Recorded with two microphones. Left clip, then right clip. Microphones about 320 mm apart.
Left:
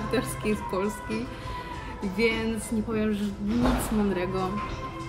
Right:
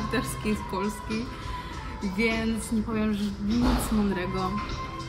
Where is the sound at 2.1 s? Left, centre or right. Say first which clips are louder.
Left 2 dB; centre.